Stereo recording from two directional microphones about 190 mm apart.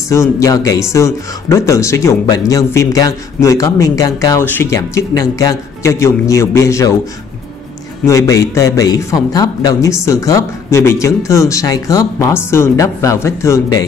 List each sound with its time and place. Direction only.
0.1 s speech: 15° left (ahead or behind)
8.0 s speech: 15° left (ahead or behind)